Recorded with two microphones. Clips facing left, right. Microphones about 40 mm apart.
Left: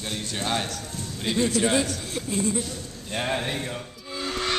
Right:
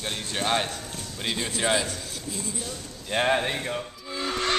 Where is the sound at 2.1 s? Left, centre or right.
Left.